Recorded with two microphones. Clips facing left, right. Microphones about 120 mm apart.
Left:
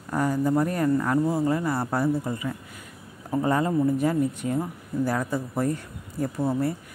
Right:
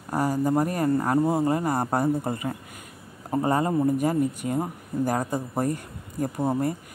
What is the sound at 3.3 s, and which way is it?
A woman's voice, 35° right (ahead or behind).